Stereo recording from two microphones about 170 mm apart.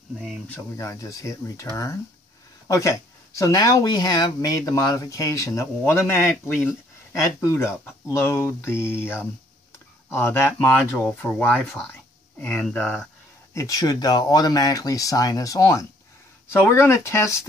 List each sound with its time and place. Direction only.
0.2 s speech: centre (ahead or behind)
0.7 s speech: 20° left (ahead or behind)
2.7 s speech: 20° left (ahead or behind)
13.6 s speech: 20° left (ahead or behind)